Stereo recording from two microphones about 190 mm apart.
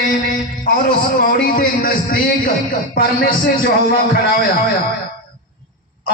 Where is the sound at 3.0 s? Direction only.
50° left (ahead or behind).